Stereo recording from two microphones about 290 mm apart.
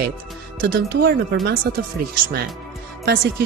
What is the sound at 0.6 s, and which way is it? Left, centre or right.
Speech, right.